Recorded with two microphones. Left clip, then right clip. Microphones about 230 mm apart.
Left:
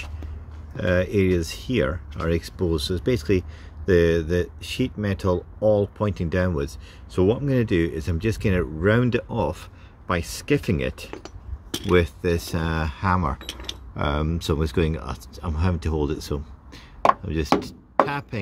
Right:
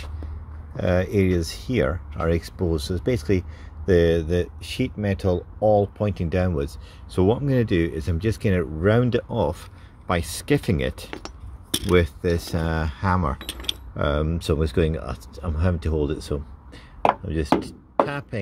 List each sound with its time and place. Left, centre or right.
0.7 s speech: centre
11.1 s chink: right
11.9 s speech: centre
13.4 s speech: right
13.9 s speech: centre